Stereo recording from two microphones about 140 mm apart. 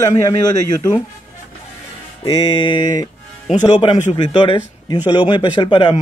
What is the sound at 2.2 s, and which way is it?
Speech, 30° left (ahead or behind).